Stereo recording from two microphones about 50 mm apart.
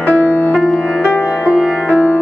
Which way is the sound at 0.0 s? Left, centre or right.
Left.